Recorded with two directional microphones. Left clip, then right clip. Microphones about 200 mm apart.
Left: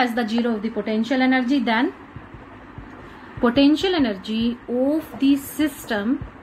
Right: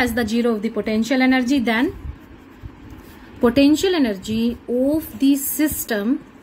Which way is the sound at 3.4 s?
55° right (ahead or behind).